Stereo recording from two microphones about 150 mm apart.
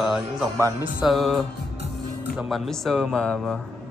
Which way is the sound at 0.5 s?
20° right (ahead or behind).